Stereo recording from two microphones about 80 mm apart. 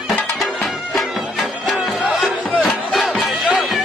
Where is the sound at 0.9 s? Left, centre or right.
Centre.